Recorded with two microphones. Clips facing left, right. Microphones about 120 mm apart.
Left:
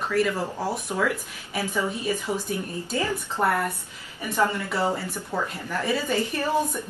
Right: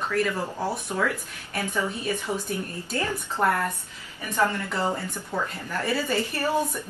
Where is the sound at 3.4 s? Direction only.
20° left (ahead or behind).